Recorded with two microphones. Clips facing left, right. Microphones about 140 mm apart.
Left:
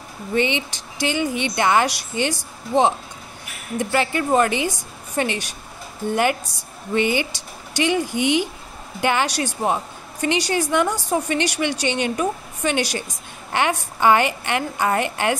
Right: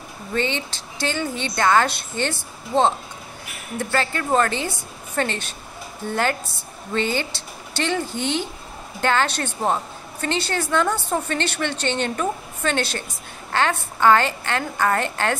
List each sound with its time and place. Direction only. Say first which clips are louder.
0.3 s a woman's voice: left 3 dB; 15° left (ahead or behind)
6.9 s a woman's voice: left 3 dB; 15° left (ahead or behind)